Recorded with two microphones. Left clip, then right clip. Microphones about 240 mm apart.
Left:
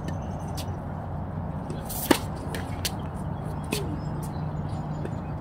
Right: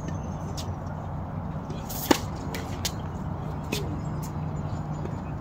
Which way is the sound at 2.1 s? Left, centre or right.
Centre.